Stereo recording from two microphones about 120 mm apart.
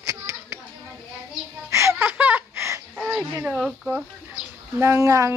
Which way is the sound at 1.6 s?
25° right (ahead or behind).